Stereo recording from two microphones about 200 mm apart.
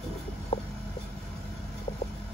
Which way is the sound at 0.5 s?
25° left (ahead or behind).